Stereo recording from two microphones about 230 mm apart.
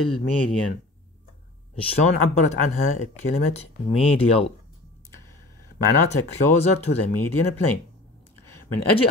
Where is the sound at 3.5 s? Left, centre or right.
Left.